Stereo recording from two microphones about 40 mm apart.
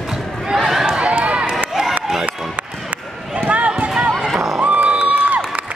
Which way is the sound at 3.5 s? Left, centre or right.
Right.